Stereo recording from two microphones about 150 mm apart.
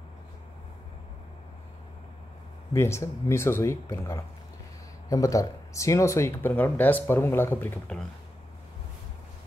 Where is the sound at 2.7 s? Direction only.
20° left (ahead or behind).